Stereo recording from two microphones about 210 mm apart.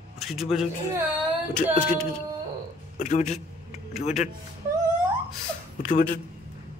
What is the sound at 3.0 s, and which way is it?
Speech, 35° left (ahead or behind).